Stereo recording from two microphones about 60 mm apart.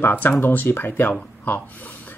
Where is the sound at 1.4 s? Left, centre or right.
Left.